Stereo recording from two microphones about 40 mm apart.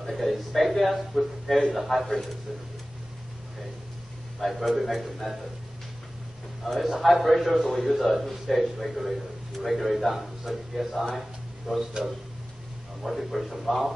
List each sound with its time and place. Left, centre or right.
0.0 s a man's voice: centre
4.4 s a man's voice: centre
6.6 s a man's voice: centre
11.1 s a sound: centre
13.0 s a man's voice: centre